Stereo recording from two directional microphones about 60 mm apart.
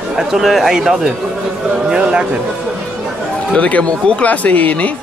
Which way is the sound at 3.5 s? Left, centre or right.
Left.